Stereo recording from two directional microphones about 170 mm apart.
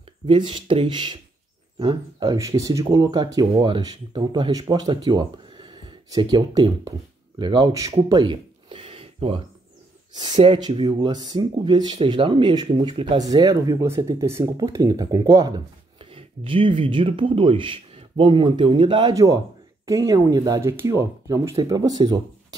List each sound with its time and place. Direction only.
0.3 s speech: 30° right (ahead or behind)